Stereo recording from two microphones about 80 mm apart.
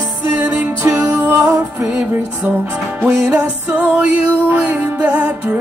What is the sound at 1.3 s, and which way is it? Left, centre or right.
Music, right.